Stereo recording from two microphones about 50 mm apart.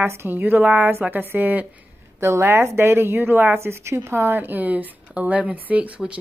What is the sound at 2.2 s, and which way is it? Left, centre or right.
Speech, right.